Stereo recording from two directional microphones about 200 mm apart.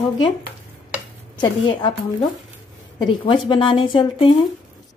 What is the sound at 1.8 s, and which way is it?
Speech, 25° left (ahead or behind).